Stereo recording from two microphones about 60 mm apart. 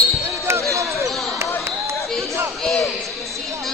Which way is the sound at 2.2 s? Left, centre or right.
Right.